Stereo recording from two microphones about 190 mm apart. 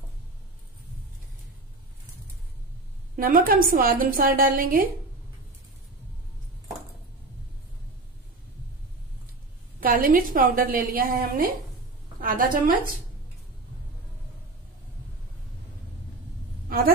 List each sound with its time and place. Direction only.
3.2 s a woman's voice: 50° right (ahead or behind)
9.8 s a woman's voice: 50° right (ahead or behind)
16.6 s a sound: 50° right (ahead or behind)